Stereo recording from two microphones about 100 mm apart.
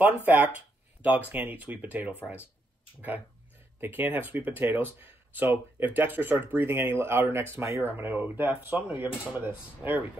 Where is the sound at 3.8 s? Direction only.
20° right (ahead or behind).